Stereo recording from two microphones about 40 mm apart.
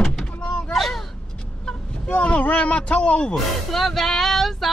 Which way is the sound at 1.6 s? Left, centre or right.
Left.